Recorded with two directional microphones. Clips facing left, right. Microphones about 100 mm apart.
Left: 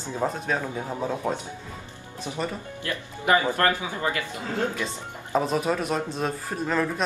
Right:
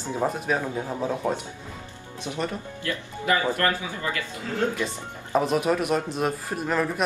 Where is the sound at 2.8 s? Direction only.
25° left (ahead or behind).